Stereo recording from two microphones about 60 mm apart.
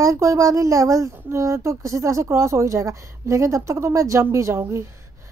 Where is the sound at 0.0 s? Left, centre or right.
Right.